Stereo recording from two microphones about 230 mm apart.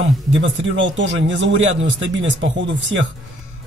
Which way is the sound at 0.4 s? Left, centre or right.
Right.